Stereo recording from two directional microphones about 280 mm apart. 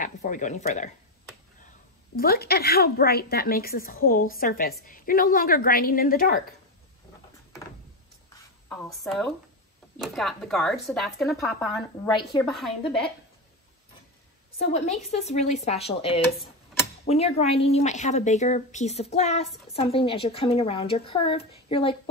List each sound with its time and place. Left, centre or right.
0.0 s speech: left
2.1 s a woman's voice: left
8.6 s speech: centre
14.7 s speech: left